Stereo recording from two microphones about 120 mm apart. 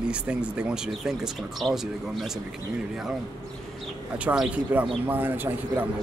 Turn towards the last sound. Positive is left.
turn(degrees=-15)  # may be behind; listen again after turning